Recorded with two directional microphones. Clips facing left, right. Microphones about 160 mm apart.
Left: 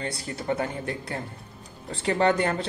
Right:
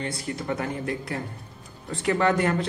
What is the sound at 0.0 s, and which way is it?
A man's voice, 30° left (ahead or behind).